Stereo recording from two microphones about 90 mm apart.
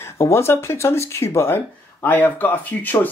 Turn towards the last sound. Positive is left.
turn(degrees=20)  # may be behind; listen again after turning